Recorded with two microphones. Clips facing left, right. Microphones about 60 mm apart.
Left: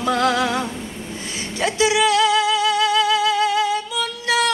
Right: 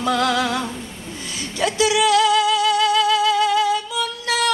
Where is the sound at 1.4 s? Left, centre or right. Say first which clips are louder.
Even; left.